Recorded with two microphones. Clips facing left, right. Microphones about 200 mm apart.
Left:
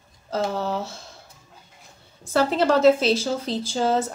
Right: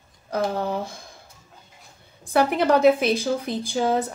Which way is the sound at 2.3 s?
15° right (ahead or behind).